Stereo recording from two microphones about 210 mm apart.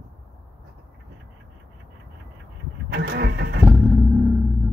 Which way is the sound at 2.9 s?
50° right (ahead or behind).